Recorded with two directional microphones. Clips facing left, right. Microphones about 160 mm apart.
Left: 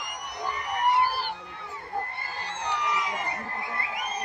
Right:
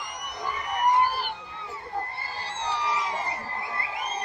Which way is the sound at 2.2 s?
30° right (ahead or behind).